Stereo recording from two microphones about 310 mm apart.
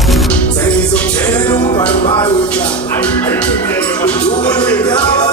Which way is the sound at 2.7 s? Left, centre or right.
Centre.